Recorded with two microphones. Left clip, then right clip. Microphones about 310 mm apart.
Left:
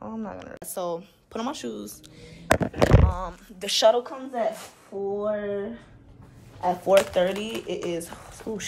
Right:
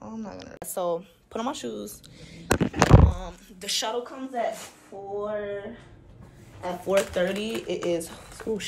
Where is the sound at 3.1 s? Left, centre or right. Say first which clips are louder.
Left 6 dB; centre.